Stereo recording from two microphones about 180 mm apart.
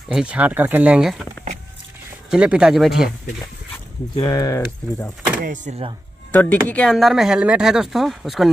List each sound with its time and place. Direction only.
0.1 s speech: 5° right (ahead or behind)
2.3 s speech: 5° right (ahead or behind)
4.2 s speech: 20° left (ahead or behind)
5.4 s speech: 45° right (ahead or behind)
6.3 s speech: 10° left (ahead or behind)